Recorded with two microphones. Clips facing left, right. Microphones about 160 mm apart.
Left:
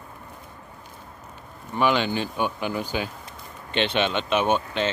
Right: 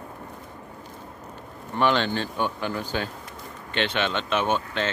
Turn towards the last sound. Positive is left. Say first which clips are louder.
# left 2 dB
turn(degrees=15)  # may be behind; listen again after turning